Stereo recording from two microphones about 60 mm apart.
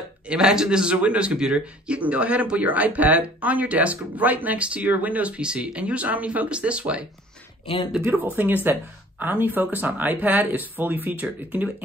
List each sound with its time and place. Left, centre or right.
0.3 s a man's voice: centre
8.0 s speech: right